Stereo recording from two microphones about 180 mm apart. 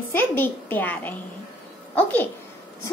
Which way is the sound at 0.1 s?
10° left (ahead or behind).